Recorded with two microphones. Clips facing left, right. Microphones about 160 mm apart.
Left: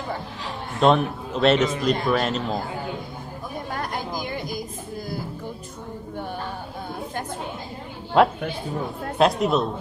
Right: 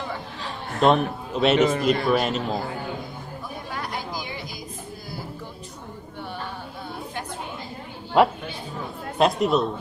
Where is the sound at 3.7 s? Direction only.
50° left (ahead or behind).